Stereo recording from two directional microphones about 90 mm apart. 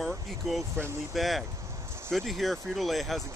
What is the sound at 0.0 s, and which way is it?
Speech, centre (ahead or behind).